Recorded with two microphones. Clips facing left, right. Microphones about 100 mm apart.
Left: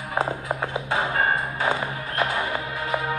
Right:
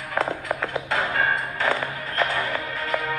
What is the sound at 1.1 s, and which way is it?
Music, 35° left (ahead or behind).